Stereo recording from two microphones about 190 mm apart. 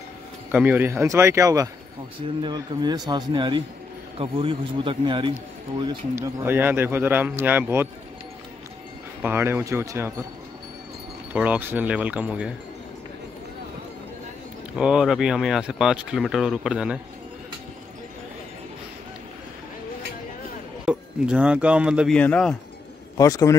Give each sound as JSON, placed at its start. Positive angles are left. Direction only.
{"t": 0.5, "sound": "a man's voice", "side_deg": -10}
{"t": 6.1, "sound": "a man's voice", "side_deg": -10}
{"t": 9.2, "sound": "a man's voice", "side_deg": -10}
{"t": 11.3, "sound": "a man's voice", "side_deg": -10}
{"t": 14.8, "sound": "speech", "side_deg": -5}
{"t": 20.8, "sound": "speech", "side_deg": -5}
{"t": 22.1, "sound": "speech", "side_deg": 5}
{"t": 23.1, "sound": "a man's voice", "side_deg": 20}